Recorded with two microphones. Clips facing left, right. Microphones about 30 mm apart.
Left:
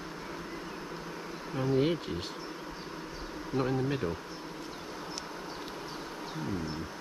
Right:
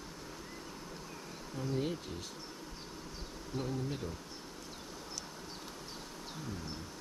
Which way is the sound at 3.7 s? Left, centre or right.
Left.